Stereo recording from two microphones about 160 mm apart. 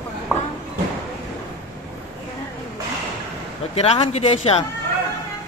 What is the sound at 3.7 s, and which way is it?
Speech, 40° left (ahead or behind).